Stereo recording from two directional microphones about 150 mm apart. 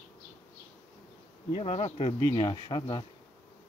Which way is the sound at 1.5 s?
40° left (ahead or behind).